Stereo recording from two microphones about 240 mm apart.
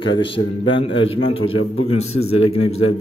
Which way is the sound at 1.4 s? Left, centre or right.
Left.